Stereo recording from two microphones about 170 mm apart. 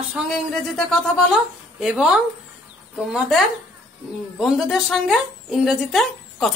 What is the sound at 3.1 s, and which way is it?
Speech, centre (ahead or behind).